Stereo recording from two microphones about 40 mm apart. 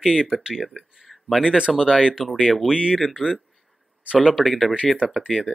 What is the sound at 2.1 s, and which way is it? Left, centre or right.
Speech, centre.